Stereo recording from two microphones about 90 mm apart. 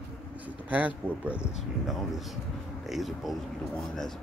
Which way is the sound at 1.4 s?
Centre (ahead or behind).